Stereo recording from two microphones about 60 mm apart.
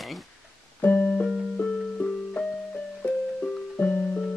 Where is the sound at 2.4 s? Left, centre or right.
Left.